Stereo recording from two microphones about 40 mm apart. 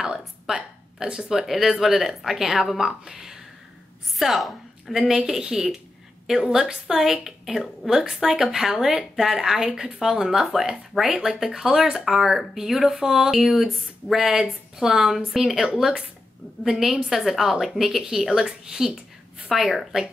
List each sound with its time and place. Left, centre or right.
0.0 s a sound: centre
0.9 s speech: centre
1.4 s a woman's voice: centre
19.5 s speech: centre